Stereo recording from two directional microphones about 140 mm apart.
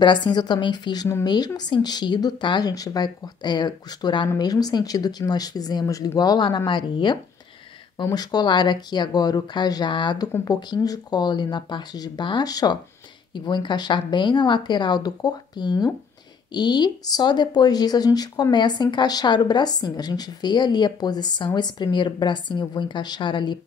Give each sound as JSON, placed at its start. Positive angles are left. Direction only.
{"t": 0.0, "sound": "speech", "side_deg": 35}